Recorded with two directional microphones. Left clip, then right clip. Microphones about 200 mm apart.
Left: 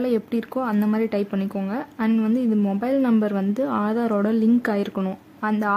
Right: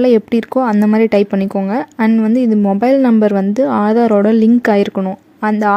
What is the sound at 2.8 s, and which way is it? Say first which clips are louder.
Speech: right 11 dB; 30° right (ahead or behind).